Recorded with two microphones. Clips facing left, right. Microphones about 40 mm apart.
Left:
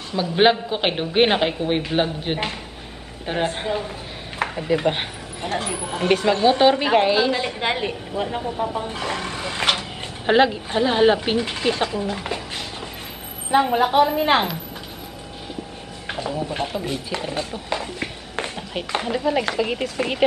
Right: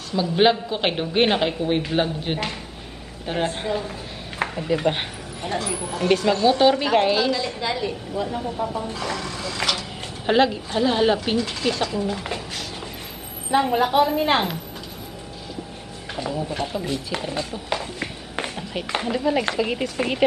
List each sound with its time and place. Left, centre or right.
0.1 s a woman's voice: centre
5.4 s speech: left
7.3 s a woman's voice: left
10.2 s speech: centre
13.5 s a woman's voice: centre
16.3 s a woman's voice: centre
18.4 s music: centre
18.9 s speech: centre